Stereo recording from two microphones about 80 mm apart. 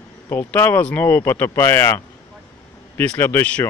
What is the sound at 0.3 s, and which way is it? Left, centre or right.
Speech, left.